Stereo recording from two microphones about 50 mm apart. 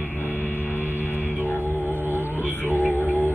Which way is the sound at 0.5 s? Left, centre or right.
Left.